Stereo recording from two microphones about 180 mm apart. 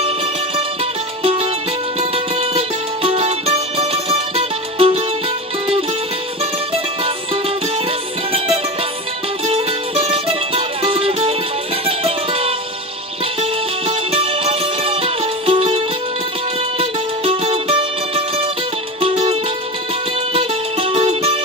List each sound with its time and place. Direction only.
1.2 s music: 30° right (ahead or behind)
9.5 s music: 35° right (ahead or behind)
20.3 s music: 30° right (ahead or behind)